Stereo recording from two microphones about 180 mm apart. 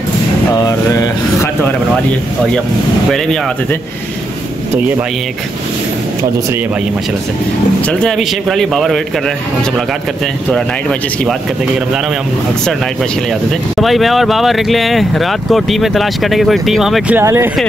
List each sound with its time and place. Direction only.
0.5 s speech: 20° left (ahead or behind)
7.9 s speech: centre (ahead or behind)
10.5 s speech: 5° left (ahead or behind)
13.7 s speech: centre (ahead or behind)
17.2 s speech: 15° right (ahead or behind)